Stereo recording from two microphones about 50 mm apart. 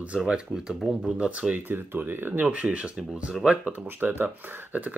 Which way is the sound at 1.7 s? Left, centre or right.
Right.